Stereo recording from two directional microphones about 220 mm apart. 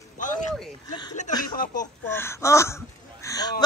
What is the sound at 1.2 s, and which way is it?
Speech, 35° left (ahead or behind).